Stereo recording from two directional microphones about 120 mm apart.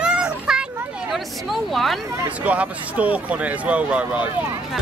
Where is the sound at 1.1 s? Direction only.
Centre (ahead or behind).